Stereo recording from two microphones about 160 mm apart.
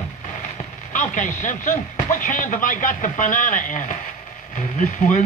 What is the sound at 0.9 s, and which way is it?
Speech, 50° left (ahead or behind).